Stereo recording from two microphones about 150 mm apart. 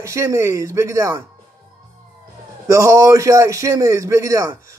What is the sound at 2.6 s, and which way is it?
A man's voice, 20° right (ahead or behind).